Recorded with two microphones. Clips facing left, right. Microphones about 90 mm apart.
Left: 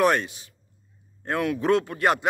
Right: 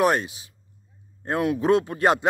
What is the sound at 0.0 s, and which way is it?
A man's voice, 20° right (ahead or behind).